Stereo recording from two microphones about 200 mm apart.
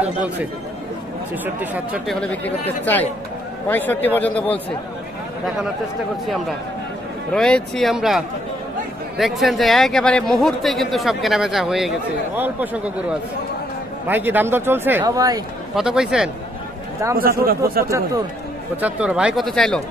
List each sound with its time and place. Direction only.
1.4 s a man's voice: 10° right (ahead or behind)
2.8 s speech: 10° left (ahead or behind)
7.3 s speech: 5° left (ahead or behind)
9.2 s a man's voice: centre (ahead or behind)
14.0 s a man's voice: 10° right (ahead or behind)
15.7 s speech: 5° right (ahead or behind)
17.2 s speech: 45° right (ahead or behind)
17.8 s a man's voice: 15° right (ahead or behind); by 19.8 s 5° left (ahead or behind)